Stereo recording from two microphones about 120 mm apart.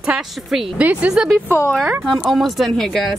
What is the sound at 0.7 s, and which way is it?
A woman's voice, 10° right (ahead or behind).